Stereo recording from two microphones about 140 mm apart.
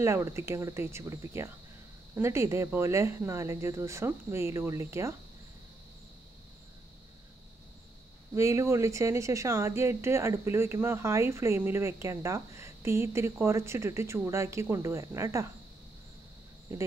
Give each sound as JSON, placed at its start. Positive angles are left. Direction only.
{"t": 0.0, "sound": "a woman's voice", "side_deg": -20}
{"t": 8.4, "sound": "a woman's voice", "side_deg": -20}